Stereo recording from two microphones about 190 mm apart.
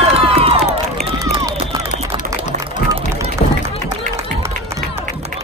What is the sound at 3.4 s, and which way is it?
Music, 35° left (ahead or behind).